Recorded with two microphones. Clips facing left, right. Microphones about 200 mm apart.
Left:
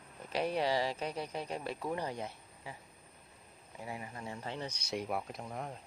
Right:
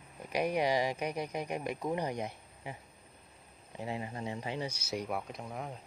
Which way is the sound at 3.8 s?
25° right (ahead or behind).